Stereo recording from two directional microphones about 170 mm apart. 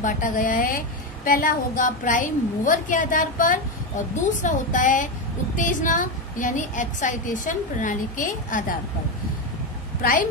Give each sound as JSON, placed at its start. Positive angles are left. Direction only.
{"t": 0.0, "sound": "a woman's voice", "side_deg": 50}